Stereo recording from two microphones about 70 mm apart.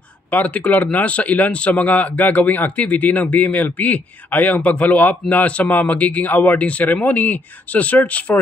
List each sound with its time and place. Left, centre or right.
0.3 s a man's voice: left